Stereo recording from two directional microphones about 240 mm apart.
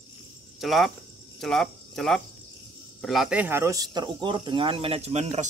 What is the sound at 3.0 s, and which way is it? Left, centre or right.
Speech, centre.